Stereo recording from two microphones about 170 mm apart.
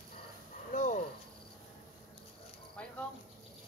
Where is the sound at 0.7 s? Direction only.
45° left (ahead or behind).